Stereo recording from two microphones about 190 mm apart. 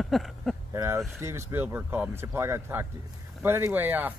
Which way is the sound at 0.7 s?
15° right (ahead or behind).